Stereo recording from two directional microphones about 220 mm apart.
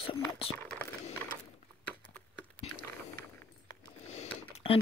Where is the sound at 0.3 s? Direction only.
25° left (ahead or behind).